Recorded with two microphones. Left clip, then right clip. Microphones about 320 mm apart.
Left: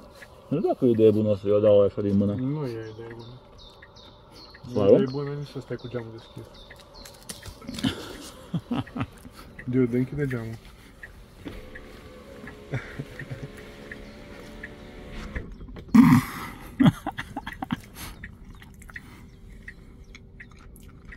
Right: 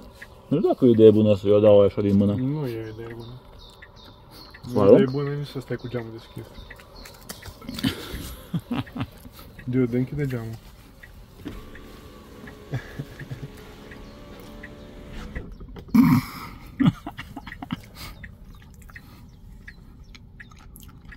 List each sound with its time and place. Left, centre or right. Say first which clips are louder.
0.5 s speech: right 4 dB; right
4.6 s speech: right 3 dB; centre
5.1 s speech: right 3 dB; right
7.8 s a sound: right 2 dB; centre
9.7 s speech: even; centre
15.9 s a sound: left 2 dB; centre